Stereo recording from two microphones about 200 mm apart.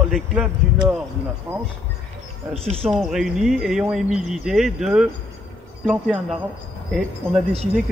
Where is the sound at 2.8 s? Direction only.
Centre (ahead or behind).